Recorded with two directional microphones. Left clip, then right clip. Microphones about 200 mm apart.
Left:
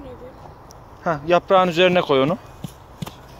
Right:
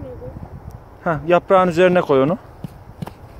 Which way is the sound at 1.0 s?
25° right (ahead or behind).